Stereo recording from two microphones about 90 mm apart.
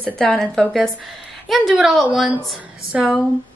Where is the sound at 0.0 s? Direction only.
10° left (ahead or behind).